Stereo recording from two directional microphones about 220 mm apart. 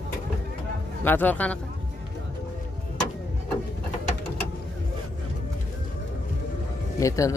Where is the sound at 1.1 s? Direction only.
10° left (ahead or behind).